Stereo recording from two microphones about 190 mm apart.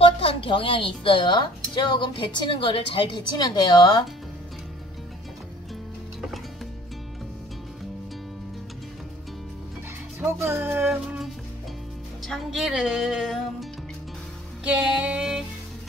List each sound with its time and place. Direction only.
0.0 s a woman's voice: 30° left (ahead or behind)
10.4 s music: 10° right (ahead or behind)
12.3 s speech: centre (ahead or behind)
14.6 s female singing: 5° right (ahead or behind)